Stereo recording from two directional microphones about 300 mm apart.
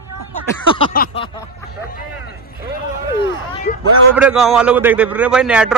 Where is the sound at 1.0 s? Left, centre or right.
Left.